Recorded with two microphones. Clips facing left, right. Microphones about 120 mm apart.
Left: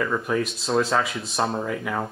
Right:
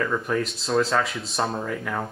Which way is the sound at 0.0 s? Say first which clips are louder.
Left 1 dB; 5° left (ahead or behind).